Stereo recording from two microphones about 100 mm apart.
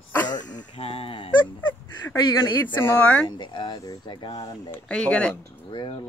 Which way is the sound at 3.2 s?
45° left (ahead or behind).